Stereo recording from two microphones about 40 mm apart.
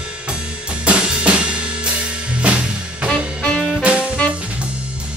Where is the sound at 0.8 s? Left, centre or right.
Right.